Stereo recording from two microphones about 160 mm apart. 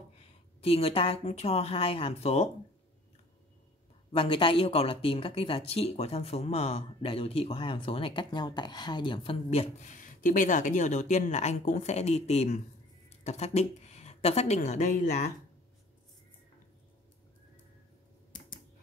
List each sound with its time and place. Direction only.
0.6 s speech: 35° left (ahead or behind)
4.1 s speech: 35° left (ahead or behind)
9.9 s a woman's voice: 55° left (ahead or behind)